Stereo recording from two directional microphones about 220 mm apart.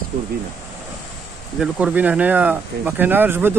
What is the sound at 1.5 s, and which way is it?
Speech, 5° right (ahead or behind).